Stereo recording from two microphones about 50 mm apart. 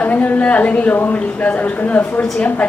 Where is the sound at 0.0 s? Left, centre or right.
Left.